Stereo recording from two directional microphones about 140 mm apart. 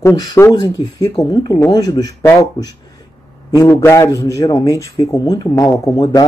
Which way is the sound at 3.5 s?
25° left (ahead or behind).